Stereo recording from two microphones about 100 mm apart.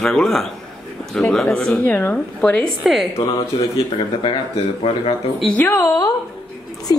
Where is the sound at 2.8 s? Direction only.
Centre (ahead or behind).